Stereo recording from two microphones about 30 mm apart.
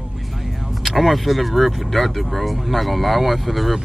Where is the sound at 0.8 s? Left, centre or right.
Centre.